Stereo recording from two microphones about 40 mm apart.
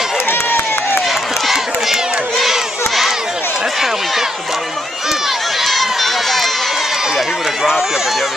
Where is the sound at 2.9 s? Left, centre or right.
Centre.